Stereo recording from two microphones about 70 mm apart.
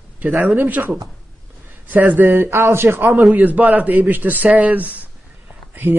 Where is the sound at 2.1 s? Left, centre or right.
Right.